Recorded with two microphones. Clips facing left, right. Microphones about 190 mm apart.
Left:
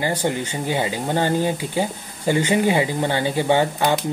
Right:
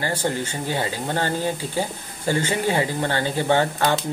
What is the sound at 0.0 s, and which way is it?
Speech, 15° left (ahead or behind).